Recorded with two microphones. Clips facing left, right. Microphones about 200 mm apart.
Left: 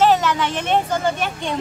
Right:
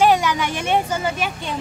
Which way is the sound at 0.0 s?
10° right (ahead or behind).